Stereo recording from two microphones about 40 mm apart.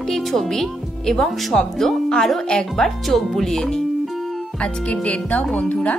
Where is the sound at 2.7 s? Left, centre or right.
Centre.